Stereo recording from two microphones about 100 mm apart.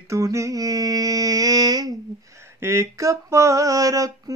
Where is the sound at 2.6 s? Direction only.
30° right (ahead or behind).